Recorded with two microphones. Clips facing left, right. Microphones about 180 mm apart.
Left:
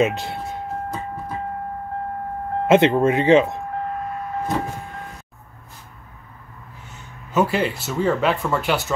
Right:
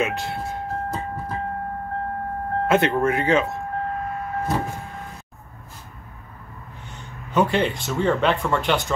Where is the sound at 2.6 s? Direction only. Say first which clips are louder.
Left 5 dB; 20° left (ahead or behind).